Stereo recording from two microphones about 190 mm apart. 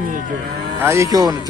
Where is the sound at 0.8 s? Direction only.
15° right (ahead or behind).